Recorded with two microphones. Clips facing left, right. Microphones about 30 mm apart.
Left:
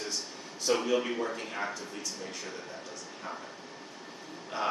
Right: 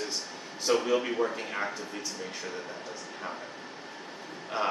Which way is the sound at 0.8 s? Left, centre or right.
Centre.